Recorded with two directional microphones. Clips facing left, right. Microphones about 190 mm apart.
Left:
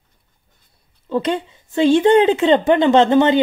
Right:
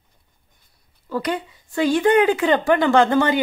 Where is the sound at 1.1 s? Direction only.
25° left (ahead or behind).